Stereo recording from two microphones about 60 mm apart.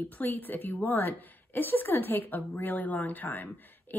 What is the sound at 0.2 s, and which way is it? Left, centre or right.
Speech, left.